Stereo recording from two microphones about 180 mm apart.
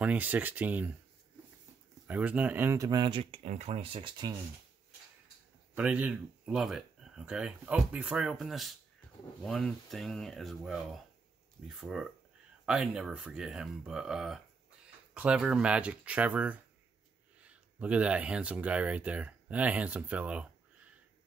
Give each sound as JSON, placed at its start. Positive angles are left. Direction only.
{"t": 0.0, "sound": "speech", "side_deg": -10}
{"t": 2.0, "sound": "speech", "side_deg": -10}
{"t": 5.8, "sound": "speech", "side_deg": -5}